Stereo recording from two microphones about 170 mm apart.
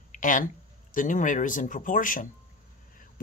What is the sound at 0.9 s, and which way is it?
Speech, 50° left (ahead or behind).